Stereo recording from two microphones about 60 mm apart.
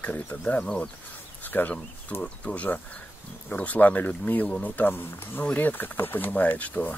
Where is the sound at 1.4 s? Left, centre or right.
Left.